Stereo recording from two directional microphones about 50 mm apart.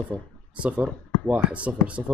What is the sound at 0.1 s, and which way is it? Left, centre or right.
Speech, right.